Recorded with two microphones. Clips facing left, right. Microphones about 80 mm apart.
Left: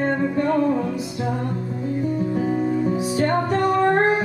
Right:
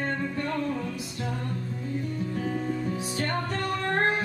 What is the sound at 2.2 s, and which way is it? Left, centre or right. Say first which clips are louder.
Music: left 6 dB; centre.